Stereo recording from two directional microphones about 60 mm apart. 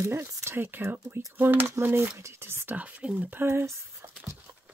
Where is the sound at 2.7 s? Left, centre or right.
Right.